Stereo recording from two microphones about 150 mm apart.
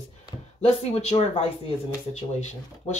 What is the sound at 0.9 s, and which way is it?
Speech, 45° left (ahead or behind).